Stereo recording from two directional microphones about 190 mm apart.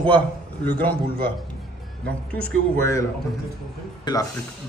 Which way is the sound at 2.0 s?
10° left (ahead or behind).